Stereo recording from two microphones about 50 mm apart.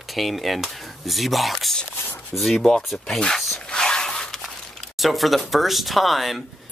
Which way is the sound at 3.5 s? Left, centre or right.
Centre.